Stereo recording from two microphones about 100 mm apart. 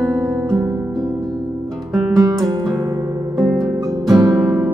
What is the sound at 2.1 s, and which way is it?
Music, 40° right (ahead or behind).